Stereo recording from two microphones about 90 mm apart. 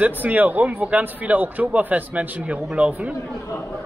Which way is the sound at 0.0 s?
20° right (ahead or behind).